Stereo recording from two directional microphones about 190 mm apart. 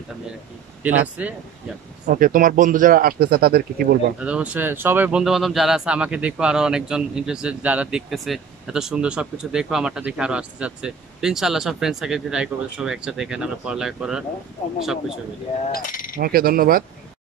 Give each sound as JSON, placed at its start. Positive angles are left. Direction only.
{"t": 0.8, "sound": "speech", "side_deg": -10}
{"t": 2.0, "sound": "a man's voice", "side_deg": -45}
{"t": 4.2, "sound": "a man's voice", "side_deg": -5}
{"t": 15.7, "sound": "a sound", "side_deg": 45}
{"t": 16.2, "sound": "a man's voice", "side_deg": -50}